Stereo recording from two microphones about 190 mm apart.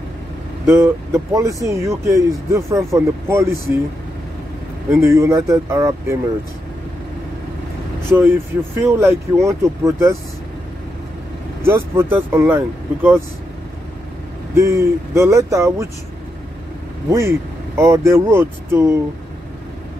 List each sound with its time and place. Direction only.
0.7 s speech: 15° right (ahead or behind)
5.0 s speech: 15° right (ahead or behind)
8.1 s speech: 10° right (ahead or behind)
11.6 s speech: 15° right (ahead or behind)
14.5 s speech: 15° right (ahead or behind)
17.1 s speech: 15° right (ahead or behind)